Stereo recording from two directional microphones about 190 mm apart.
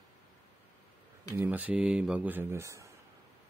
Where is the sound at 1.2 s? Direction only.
10° right (ahead or behind).